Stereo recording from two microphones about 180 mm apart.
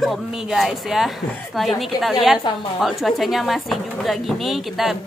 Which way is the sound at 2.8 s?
Centre (ahead or behind).